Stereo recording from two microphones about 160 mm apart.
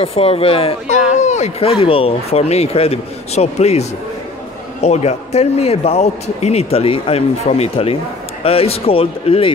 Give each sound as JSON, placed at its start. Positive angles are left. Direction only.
{"t": 0.0, "sound": "speech", "side_deg": 40}
{"t": 4.8, "sound": "speech", "side_deg": 40}